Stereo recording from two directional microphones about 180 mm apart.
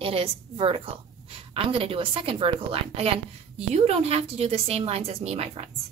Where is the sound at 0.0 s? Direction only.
30° right (ahead or behind).